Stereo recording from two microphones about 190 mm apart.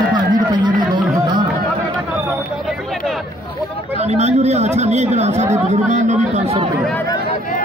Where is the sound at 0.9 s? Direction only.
25° right (ahead or behind).